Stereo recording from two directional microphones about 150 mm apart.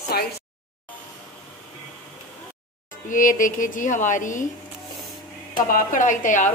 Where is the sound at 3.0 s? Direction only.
60° left (ahead or behind).